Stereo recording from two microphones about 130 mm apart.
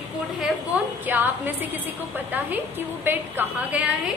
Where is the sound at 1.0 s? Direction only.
15° right (ahead or behind).